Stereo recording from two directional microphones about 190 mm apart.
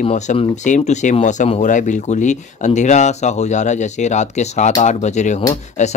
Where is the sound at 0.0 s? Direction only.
35° left (ahead or behind).